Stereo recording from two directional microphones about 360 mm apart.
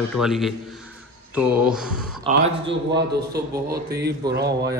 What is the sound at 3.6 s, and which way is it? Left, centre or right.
Speech, right.